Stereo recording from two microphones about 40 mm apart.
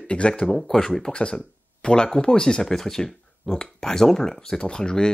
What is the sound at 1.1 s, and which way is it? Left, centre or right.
Speech, left.